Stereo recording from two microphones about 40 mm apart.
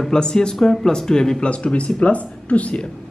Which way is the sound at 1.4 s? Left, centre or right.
Left.